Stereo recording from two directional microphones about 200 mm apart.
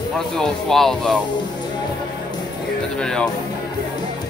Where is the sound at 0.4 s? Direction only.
Centre (ahead or behind).